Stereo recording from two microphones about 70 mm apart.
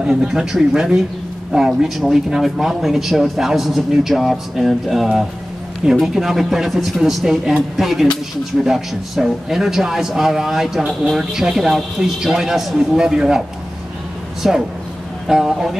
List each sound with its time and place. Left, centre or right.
0.0 s speech: centre
14.4 s speech: centre